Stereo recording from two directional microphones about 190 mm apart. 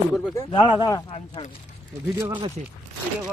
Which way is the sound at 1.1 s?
30° left (ahead or behind).